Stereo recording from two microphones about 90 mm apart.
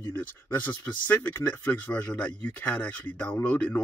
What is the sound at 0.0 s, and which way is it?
Speech, 20° left (ahead or behind).